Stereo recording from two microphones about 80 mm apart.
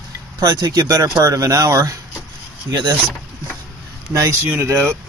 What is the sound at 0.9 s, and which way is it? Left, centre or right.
Speech, right.